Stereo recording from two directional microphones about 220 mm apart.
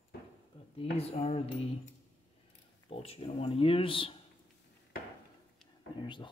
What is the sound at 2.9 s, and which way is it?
Speech, 25° left (ahead or behind).